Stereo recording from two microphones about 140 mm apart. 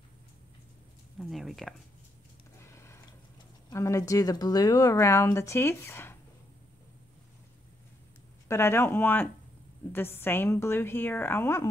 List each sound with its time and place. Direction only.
1.2 s speech: centre (ahead or behind)
2.6 s a sound: 20° left (ahead or behind)
3.7 s speech: 20° left (ahead or behind)
8.5 s a woman's voice: 20° left (ahead or behind)